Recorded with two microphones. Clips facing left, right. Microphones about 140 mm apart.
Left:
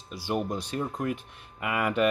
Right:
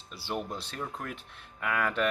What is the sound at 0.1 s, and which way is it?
Speech, 15° left (ahead or behind).